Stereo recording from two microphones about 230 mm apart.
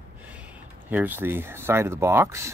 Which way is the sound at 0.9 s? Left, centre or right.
Centre.